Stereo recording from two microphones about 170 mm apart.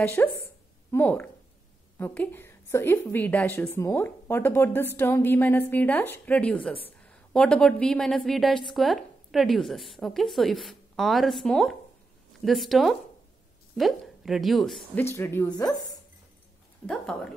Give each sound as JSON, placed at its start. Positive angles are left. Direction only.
{"t": 0.0, "sound": "a woman's voice", "side_deg": 10}
{"t": 15.0, "sound": "speech", "side_deg": 15}
{"t": 16.8, "sound": "speech", "side_deg": 0}